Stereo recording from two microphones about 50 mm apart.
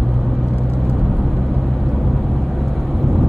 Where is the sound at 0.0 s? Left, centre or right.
Centre.